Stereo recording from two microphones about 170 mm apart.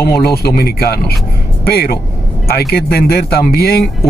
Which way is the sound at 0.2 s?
65° left (ahead or behind).